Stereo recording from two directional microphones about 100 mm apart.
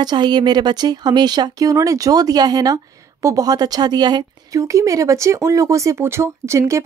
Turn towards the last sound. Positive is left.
turn(degrees=-30)  # may be behind; listen again after turning